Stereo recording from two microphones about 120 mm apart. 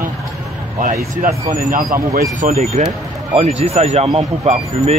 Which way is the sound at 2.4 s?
70° right (ahead or behind).